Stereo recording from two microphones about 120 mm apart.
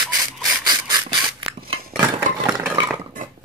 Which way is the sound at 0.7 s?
35° right (ahead or behind).